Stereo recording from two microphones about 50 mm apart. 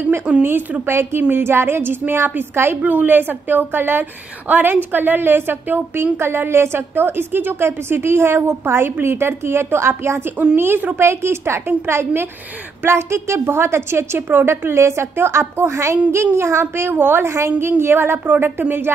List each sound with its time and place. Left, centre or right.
0.4 s a woman's voice: right
2.8 s a woman's voice: right
6.1 s a woman's voice: right
10.3 s a woman's voice: right
11.0 s a woman's voice: right
12.8 s a woman's voice: right
15.1 s a woman's voice: right
18.2 s a woman's voice: right